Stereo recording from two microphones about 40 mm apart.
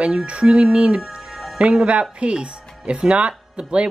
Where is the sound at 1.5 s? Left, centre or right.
Right.